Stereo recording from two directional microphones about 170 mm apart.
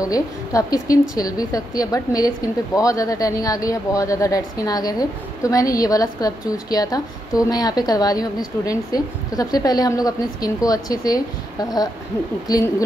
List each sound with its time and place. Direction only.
0.0 s a woman's voice: 20° left (ahead or behind)